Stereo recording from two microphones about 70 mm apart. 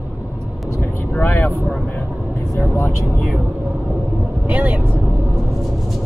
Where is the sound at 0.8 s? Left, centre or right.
Left.